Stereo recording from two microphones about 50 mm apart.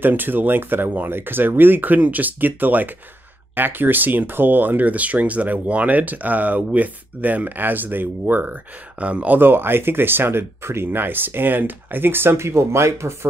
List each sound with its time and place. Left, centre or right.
0.0 s speech: right
9.0 s speech: right
9.4 s speech: right